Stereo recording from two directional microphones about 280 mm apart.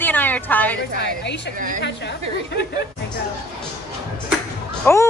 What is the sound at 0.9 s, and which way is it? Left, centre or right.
A woman's voice, left.